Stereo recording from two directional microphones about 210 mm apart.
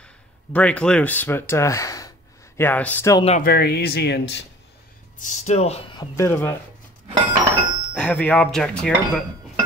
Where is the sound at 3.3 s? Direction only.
45° left (ahead or behind).